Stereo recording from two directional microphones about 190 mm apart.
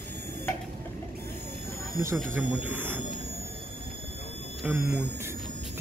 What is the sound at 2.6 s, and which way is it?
Speech, 10° right (ahead or behind).